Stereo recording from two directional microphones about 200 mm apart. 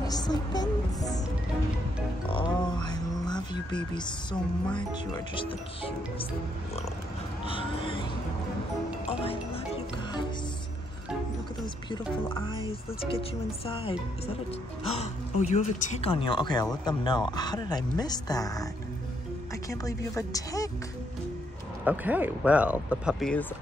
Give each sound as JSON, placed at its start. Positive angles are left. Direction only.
{"t": 0.0, "sound": "music", "side_deg": 20}
{"t": 2.2, "sound": "music", "side_deg": 25}
{"t": 3.5, "sound": "speech", "side_deg": 20}
{"t": 7.4, "sound": "speech", "side_deg": 25}
{"t": 9.0, "sound": "music", "side_deg": 30}
{"t": 11.6, "sound": "speech", "side_deg": 25}
{"t": 13.7, "sound": "speech", "side_deg": 30}
{"t": 19.7, "sound": "a woman's voice", "side_deg": 15}
{"t": 21.8, "sound": "speech", "side_deg": -10}